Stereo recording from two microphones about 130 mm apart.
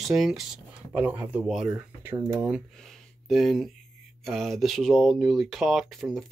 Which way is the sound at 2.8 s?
Centre (ahead or behind).